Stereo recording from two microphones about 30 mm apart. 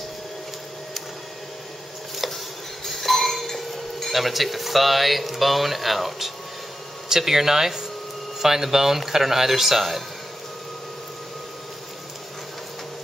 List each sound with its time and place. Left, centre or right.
2.8 s chink: centre
4.1 s speech: centre